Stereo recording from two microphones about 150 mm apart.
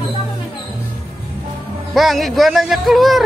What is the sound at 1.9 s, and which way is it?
Speech, centre (ahead or behind).